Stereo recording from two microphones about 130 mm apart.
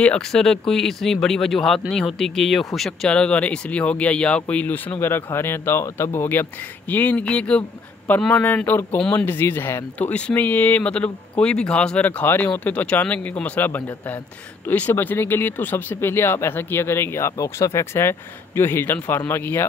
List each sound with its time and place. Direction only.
0.0 s speech: 5° left (ahead or behind)